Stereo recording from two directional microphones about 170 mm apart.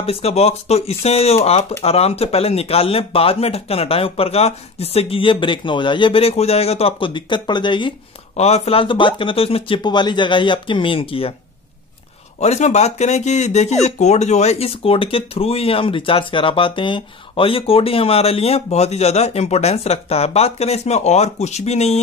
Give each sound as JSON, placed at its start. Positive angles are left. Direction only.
{"t": 0.0, "sound": "speech", "side_deg": 35}
{"t": 8.4, "sound": "speech", "side_deg": 40}
{"t": 12.4, "sound": "speech", "side_deg": 40}